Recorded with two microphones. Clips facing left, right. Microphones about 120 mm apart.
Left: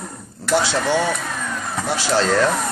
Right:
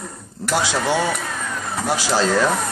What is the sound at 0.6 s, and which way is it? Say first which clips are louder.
Speech: left 1 dB; 15° right (ahead or behind).